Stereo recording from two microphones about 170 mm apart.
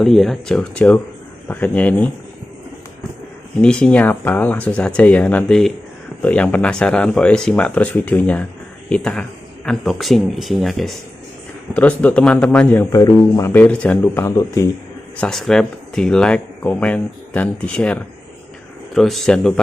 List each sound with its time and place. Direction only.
0.0 s speech: centre (ahead or behind)
3.6 s speech: 5° left (ahead or behind)
12.7 s speech: 15° left (ahead or behind)
15.1 s speech: 5° left (ahead or behind)